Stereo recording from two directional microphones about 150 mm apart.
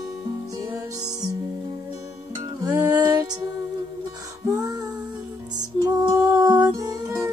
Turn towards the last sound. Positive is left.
turn(degrees=-25)  # may be behind; listen again after turning